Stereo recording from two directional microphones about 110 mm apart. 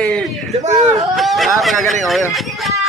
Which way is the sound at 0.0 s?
5° left (ahead or behind).